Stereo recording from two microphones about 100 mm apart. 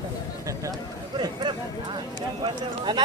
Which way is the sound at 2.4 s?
50° right (ahead or behind).